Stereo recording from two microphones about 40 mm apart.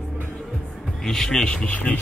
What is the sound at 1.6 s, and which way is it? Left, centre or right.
Speech, left.